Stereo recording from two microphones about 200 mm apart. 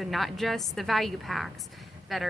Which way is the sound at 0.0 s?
Centre (ahead or behind).